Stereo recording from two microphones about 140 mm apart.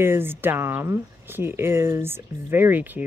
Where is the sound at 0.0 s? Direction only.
15° right (ahead or behind).